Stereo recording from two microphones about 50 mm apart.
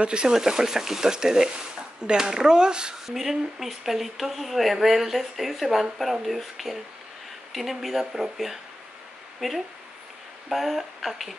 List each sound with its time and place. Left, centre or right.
0.0 s speech: centre
3.1 s speech: centre